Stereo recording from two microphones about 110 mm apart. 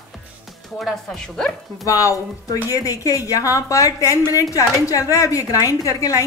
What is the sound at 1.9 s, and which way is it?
A woman's voice, 30° left (ahead or behind).